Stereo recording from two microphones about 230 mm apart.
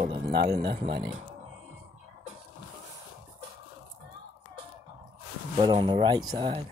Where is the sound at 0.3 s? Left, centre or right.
Right.